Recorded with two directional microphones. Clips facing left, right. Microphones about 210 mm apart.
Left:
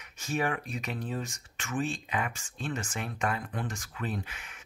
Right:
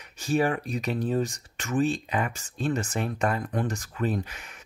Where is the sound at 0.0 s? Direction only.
35° right (ahead or behind).